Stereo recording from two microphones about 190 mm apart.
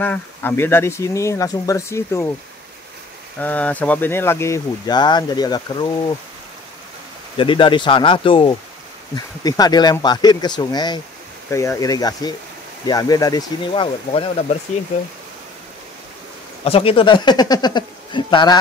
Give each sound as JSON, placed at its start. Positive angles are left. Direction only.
{"t": 0.0, "sound": "speech", "side_deg": 10}
{"t": 3.3, "sound": "speech", "side_deg": 5}
{"t": 7.3, "sound": "speech", "side_deg": 25}
{"t": 16.6, "sound": "speech", "side_deg": 30}